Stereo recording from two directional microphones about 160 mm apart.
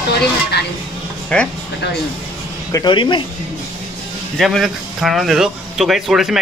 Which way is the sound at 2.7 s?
25° left (ahead or behind).